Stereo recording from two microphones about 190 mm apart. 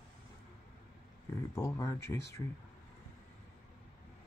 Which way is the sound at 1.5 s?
15° left (ahead or behind).